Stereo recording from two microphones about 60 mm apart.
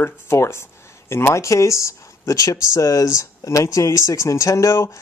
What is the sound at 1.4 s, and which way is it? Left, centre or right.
Speech, left.